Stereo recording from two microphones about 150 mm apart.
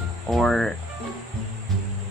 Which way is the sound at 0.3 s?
Centre (ahead or behind).